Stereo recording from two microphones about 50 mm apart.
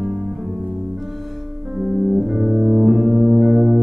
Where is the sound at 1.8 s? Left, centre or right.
Centre.